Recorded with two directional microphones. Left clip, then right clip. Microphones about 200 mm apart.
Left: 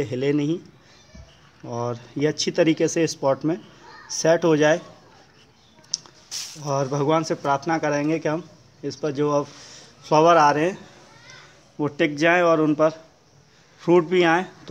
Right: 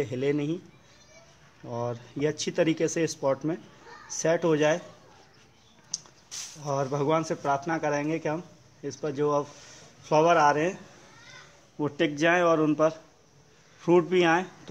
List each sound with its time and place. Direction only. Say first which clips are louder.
0.0 s speech: left 5 dB; 15° left (ahead or behind)
1.6 s speech: left 4 dB; 15° left (ahead or behind)
5.9 s speech: left 7 dB; 15° left (ahead or behind)
11.8 s speech: left 5 dB; 10° left (ahead or behind)